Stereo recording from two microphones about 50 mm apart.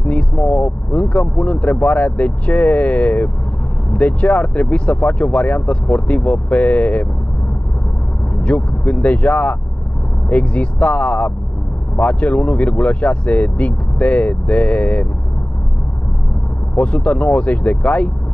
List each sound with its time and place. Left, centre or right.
0.0 s speech: left
8.4 s speech: left
16.7 s speech: left